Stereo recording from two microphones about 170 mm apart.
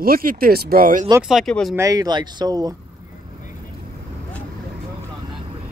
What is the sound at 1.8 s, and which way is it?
Speech, 20° right (ahead or behind).